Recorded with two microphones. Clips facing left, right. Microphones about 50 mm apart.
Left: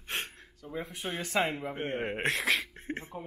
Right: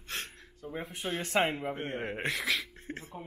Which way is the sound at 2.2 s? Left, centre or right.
Left.